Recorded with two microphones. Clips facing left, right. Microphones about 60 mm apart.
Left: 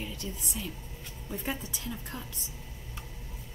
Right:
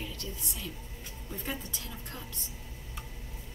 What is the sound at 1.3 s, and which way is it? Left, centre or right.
Speech, centre.